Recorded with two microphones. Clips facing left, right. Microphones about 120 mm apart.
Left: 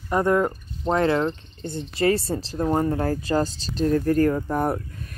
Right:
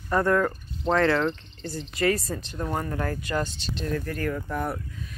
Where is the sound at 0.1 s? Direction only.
20° left (ahead or behind).